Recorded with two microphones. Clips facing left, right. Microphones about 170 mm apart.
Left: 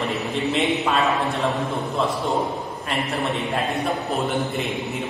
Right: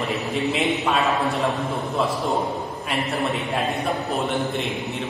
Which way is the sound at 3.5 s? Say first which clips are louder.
Even; centre (ahead or behind).